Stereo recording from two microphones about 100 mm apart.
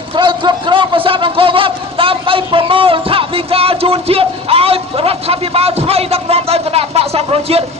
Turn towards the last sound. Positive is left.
turn(degrees=-80)